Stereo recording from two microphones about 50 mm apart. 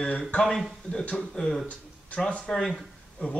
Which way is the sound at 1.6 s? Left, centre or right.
Left.